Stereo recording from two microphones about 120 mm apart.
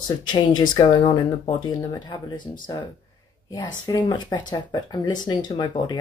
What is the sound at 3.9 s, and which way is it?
Speech, 30° left (ahead or behind).